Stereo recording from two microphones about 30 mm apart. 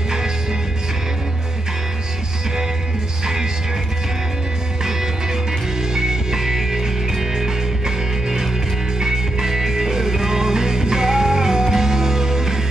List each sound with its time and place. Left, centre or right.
0.1 s music: centre
4.8 s music: centre